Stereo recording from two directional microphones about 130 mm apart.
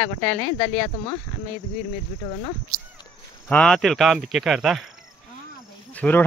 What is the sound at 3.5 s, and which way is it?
Speech, 5° left (ahead or behind).